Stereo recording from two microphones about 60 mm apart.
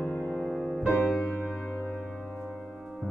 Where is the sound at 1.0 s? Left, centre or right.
Centre.